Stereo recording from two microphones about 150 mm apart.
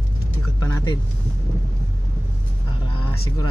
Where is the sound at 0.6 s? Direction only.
25° left (ahead or behind).